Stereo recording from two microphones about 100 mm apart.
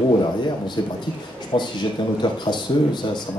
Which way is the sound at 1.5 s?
55° left (ahead or behind).